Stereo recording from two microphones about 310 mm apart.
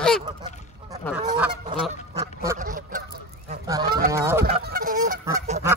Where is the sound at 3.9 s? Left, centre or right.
Right.